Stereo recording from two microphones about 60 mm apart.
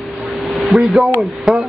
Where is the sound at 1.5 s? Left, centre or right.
Centre.